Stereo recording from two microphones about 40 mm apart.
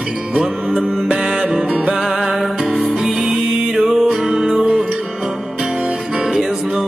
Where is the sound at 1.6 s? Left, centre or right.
Right.